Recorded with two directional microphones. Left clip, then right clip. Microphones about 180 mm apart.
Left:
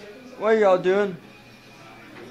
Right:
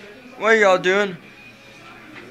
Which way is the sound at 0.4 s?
Centre (ahead or behind).